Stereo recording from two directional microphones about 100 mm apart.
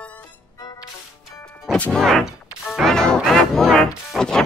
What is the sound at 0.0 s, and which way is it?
Music, 15° left (ahead or behind).